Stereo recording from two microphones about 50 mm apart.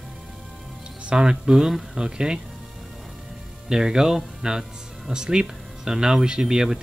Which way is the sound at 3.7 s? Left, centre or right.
Centre.